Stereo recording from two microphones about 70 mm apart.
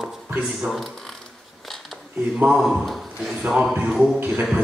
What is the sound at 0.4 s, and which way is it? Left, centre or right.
Speech, centre.